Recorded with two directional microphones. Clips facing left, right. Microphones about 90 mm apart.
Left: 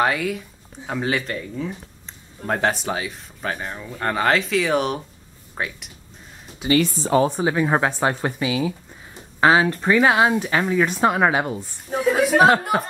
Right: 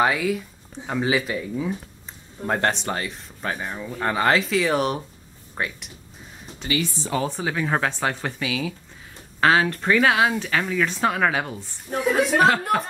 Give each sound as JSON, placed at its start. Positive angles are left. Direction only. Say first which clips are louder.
{"t": 0.0, "sound": "speech", "louder": "even", "side_deg": 0}
{"t": 6.7, "sound": "speech", "louder": "left 7 dB", "side_deg": 45}
{"t": 7.2, "sound": "speech", "louder": "left 5 dB", "side_deg": 20}
{"t": 9.1, "sound": "a sound", "louder": "left 2 dB", "side_deg": 15}
{"t": 9.8, "sound": "speech", "louder": "left 2 dB", "side_deg": 10}
{"t": 11.9, "sound": "speech", "louder": "left 2 dB", "side_deg": 5}